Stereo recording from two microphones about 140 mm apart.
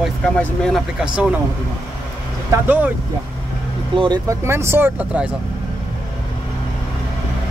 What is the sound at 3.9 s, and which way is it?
Speech, 30° right (ahead or behind).